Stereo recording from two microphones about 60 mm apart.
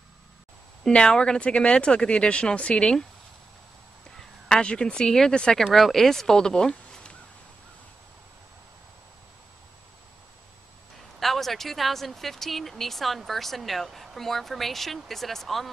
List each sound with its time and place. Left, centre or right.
0.8 s speech: centre
4.5 s speech: centre
5.6 s speech: centre
11.1 s speech: centre